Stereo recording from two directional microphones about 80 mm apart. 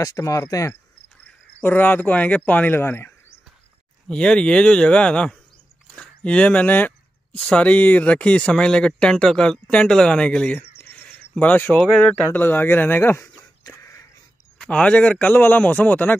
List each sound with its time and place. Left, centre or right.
0.0 s speech: left
1.2 s speech: left
4.1 s speech: centre
12.3 s speech: left
13.7 s a sound: left
14.7 s speech: centre